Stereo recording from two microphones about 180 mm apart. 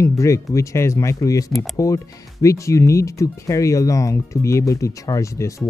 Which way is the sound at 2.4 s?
15° left (ahead or behind).